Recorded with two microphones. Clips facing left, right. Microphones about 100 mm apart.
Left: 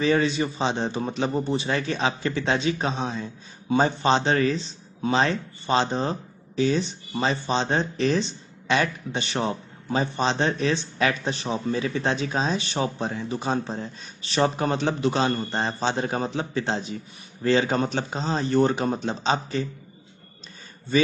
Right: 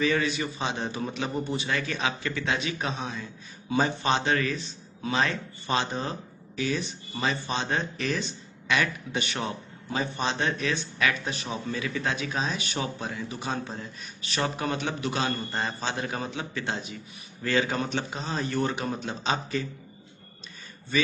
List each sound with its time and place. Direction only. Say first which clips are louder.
0.0 s speech: left 4 dB; 30° left (ahead or behind)